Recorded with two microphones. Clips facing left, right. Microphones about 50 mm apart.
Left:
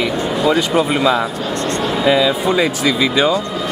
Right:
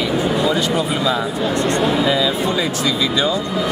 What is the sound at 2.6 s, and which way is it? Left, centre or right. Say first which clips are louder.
Speech: left 4 dB; left.